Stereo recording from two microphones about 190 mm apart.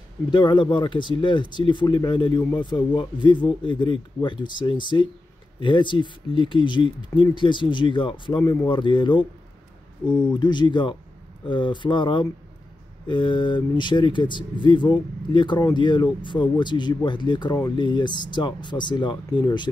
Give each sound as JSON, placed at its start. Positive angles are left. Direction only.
{"t": 0.3, "sound": "speech", "side_deg": 25}